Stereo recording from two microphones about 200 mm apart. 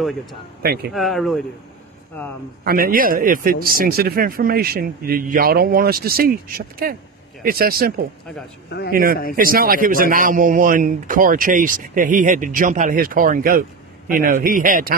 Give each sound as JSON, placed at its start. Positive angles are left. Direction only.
{"t": 0.6, "sound": "a man's voice", "side_deg": -50}
{"t": 0.9, "sound": "speech", "side_deg": 0}
{"t": 2.6, "sound": "a man's voice", "side_deg": -45}
{"t": 8.6, "sound": "a man's voice", "side_deg": 55}
{"t": 8.9, "sound": "a man's voice", "side_deg": -45}